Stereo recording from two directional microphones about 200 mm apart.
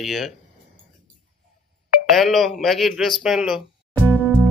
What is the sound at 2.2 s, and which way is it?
Speech, centre (ahead or behind).